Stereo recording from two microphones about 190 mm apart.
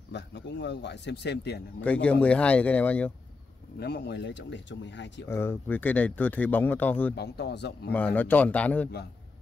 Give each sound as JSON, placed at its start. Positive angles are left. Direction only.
{"t": 0.1, "sound": "speech", "side_deg": 65}
{"t": 1.8, "sound": "speech", "side_deg": 5}
{"t": 3.8, "sound": "speech", "side_deg": 60}
{"t": 5.3, "sound": "speech", "side_deg": 15}
{"t": 7.2, "sound": "speech", "side_deg": 60}
{"t": 7.9, "sound": "speech", "side_deg": 10}